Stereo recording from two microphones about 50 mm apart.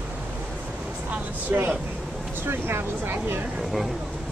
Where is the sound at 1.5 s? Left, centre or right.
Right.